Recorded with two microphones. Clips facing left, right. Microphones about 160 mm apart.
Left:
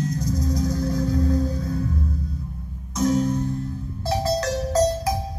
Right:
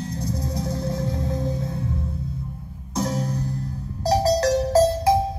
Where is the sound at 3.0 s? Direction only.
35° right (ahead or behind).